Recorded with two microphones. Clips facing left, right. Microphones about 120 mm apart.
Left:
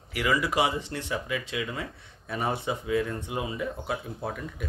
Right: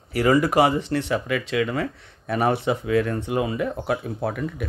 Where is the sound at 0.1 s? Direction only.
40° right (ahead or behind).